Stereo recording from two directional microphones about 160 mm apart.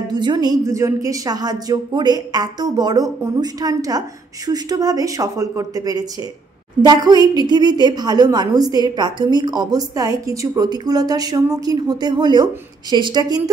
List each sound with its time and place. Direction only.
0.1 s a woman's voice: 25° right (ahead or behind)